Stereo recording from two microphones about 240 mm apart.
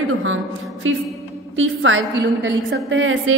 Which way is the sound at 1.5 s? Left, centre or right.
Right.